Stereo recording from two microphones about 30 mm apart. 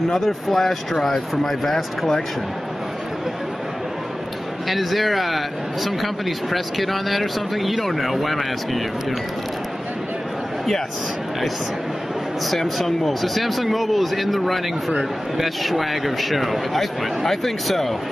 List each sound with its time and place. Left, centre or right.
0.3 s speech: centre
4.6 s speech: centre
12.4 s speech: centre